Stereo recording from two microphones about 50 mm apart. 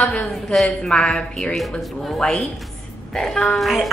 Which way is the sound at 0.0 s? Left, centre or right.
Left.